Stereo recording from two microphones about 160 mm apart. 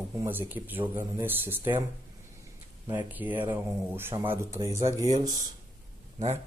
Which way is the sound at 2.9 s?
10° right (ahead or behind).